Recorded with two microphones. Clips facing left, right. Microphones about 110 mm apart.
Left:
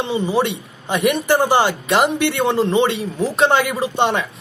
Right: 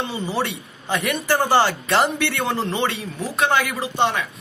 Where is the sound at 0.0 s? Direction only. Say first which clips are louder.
Left 6 dB; 20° left (ahead or behind).